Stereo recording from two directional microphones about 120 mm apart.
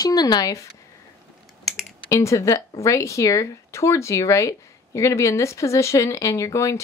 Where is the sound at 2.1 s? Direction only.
25° left (ahead or behind).